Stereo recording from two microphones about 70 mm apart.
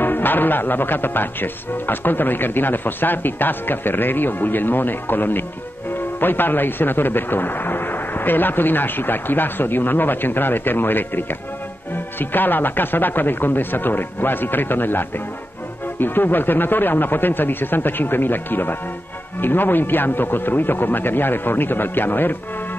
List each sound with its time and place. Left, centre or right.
0.0 s speech: left